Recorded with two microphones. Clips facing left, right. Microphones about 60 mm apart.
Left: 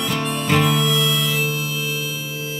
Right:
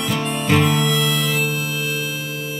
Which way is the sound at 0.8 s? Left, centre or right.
Right.